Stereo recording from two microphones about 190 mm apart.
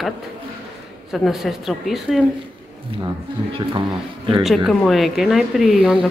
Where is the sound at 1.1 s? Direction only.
Centre (ahead or behind).